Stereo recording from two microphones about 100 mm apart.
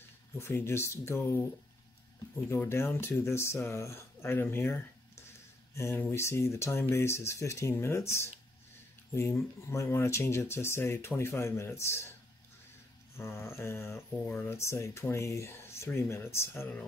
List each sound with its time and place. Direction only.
0.4 s speech: 25° left (ahead or behind)
2.6 s speech: 20° left (ahead or behind)
13.2 s speech: 25° left (ahead or behind)